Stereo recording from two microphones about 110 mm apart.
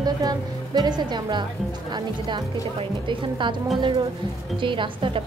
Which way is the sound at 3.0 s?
45° right (ahead or behind).